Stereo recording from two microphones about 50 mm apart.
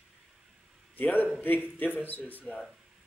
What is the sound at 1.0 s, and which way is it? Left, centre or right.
A man's voice, left.